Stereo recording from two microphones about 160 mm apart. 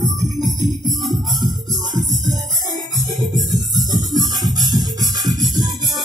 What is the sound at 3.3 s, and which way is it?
Music, 25° right (ahead or behind).